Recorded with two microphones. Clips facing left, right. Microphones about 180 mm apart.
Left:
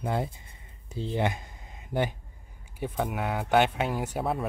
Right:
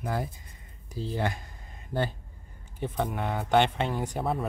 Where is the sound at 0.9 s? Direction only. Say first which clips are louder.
Left 2 dB; 20° left (ahead or behind).